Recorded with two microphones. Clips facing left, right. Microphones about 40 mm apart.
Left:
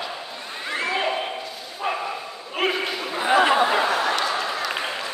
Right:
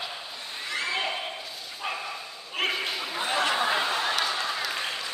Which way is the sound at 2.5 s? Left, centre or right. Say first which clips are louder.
Left 4 dB; centre.